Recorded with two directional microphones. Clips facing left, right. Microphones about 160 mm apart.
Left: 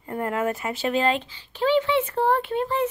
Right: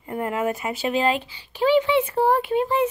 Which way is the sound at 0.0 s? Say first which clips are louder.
Right 1 dB; 10° right (ahead or behind).